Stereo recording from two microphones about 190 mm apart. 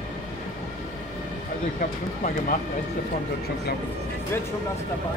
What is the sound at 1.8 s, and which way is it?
Speech, 45° left (ahead or behind).